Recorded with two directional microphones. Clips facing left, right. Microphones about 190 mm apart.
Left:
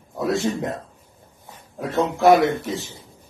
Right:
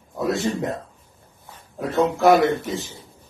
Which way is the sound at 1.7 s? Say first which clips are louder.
Right 2 dB; centre (ahead or behind).